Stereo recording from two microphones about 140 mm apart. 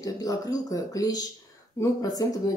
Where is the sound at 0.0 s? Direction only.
25° left (ahead or behind).